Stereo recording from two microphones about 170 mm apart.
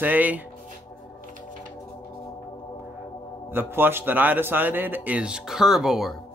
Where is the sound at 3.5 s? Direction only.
15° right (ahead or behind).